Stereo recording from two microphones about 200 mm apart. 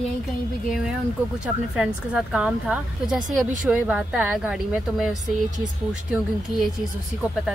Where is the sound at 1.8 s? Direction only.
5° right (ahead or behind).